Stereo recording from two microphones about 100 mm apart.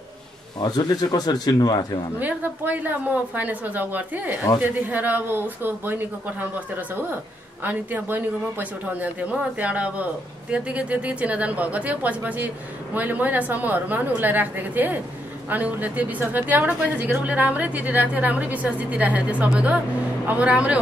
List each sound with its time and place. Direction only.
0.6 s speech: 45° left (ahead or behind)
2.1 s a woman's voice: 15° right (ahead or behind)